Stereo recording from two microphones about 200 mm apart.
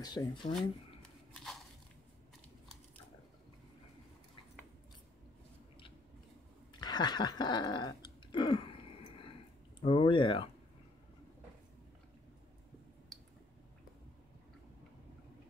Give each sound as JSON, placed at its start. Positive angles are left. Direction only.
{"t": 0.0, "sound": "speech", "side_deg": 20}
{"t": 1.3, "sound": "a sound", "side_deg": 0}
{"t": 6.7, "sound": "dog", "side_deg": 20}
{"t": 9.8, "sound": "speech", "side_deg": 25}
{"t": 13.1, "sound": "squish", "side_deg": 0}